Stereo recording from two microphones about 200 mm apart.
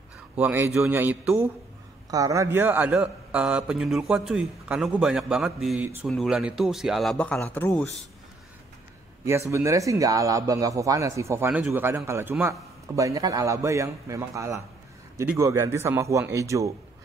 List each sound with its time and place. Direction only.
0.4 s a man's voice: 10° right (ahead or behind); by 7.9 s 10° left (ahead or behind)
9.5 s speech: 15° right (ahead or behind)